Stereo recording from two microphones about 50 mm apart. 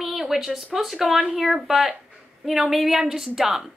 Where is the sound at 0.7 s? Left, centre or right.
Centre.